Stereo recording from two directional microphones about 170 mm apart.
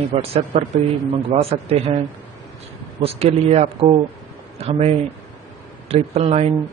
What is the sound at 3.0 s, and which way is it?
Speech, 35° right (ahead or behind).